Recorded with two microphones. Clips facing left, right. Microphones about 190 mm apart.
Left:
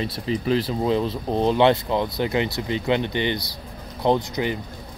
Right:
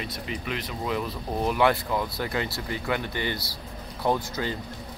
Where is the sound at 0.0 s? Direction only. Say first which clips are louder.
Left 8 dB; 30° left (ahead or behind).